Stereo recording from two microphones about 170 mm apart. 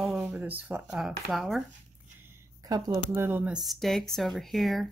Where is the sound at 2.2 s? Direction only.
20° right (ahead or behind).